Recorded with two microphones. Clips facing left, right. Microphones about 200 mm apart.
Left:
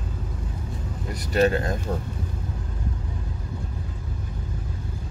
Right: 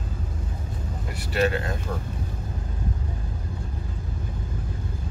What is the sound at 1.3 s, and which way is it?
Speech, 40° left (ahead or behind).